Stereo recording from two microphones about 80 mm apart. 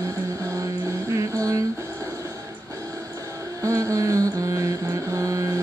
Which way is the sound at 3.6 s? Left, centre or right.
Right.